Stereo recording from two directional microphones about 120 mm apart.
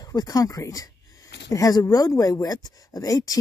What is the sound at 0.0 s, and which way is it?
Speech, 35° left (ahead or behind).